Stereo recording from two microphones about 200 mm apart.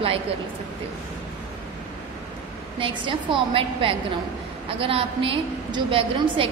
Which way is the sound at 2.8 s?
25° right (ahead or behind).